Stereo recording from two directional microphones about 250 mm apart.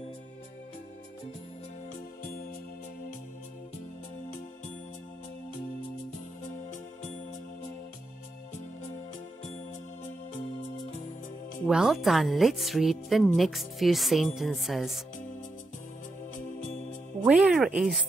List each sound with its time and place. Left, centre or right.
6.4 s music: left
11.6 s a woman's voice: centre
17.2 s speech: centre